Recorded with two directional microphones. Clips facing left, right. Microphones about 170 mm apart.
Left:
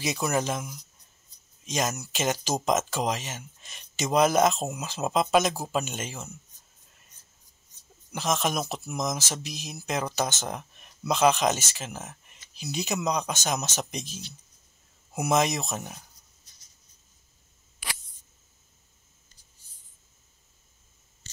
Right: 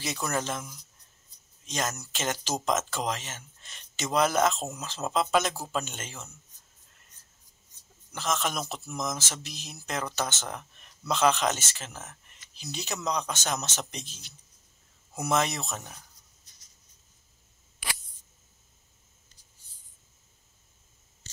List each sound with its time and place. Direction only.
0.0 s speech: 15° left (ahead or behind)
8.1 s speech: 15° left (ahead or behind)